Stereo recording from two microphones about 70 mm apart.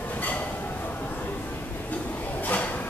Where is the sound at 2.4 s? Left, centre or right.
Left.